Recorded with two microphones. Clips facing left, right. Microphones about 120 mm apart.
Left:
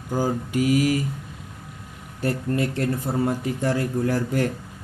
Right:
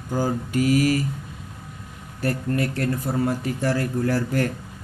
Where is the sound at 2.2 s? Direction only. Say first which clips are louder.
Even; 20° left (ahead or behind).